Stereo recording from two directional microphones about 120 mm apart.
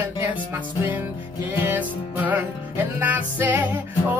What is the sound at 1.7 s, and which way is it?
Music, 15° right (ahead or behind).